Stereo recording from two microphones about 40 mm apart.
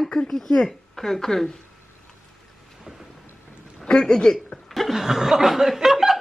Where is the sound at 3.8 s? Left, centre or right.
Centre.